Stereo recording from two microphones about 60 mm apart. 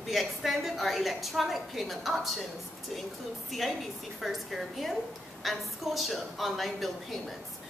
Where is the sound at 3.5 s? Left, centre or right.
Centre.